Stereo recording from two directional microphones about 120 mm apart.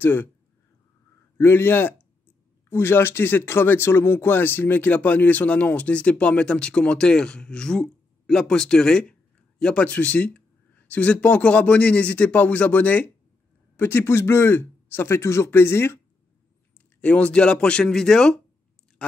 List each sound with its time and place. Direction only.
0.0 s speech: 15° left (ahead or behind)
1.4 s speech: 20° left (ahead or behind)
17.0 s speech: 10° left (ahead or behind)